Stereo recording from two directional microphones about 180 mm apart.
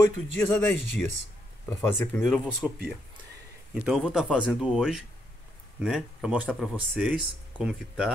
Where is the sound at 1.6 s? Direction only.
10° left (ahead or behind).